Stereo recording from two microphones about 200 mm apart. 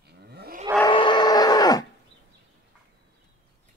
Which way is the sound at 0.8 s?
25° left (ahead or behind).